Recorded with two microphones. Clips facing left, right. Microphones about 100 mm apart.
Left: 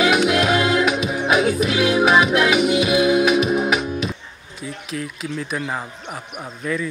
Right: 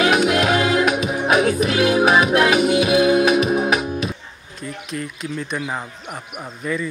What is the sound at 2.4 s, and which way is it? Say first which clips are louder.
Music: right 1 dB; 40° right (ahead or behind).